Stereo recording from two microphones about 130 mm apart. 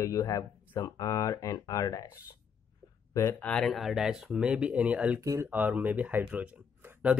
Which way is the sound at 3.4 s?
5° left (ahead or behind).